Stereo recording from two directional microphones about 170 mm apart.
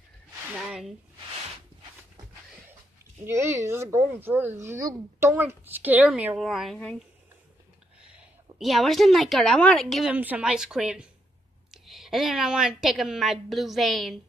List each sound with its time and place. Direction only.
0.6 s speech: 5° right (ahead or behind)
3.3 s a woman's voice: 15° right (ahead or behind); by 7.0 s 5° left (ahead or behind)
8.1 s a woman's voice: 5° right (ahead or behind)